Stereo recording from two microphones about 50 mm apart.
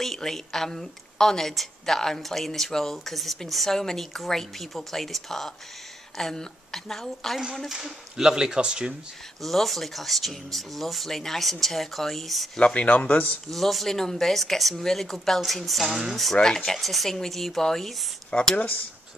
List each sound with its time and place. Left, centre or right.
0.0 s a woman's voice: centre
7.7 s speech: centre
9.4 s a woman's voice: centre
12.5 s speech: left
13.5 s a woman's voice: centre
16.3 s a woman's voice: centre
18.3 s speech: left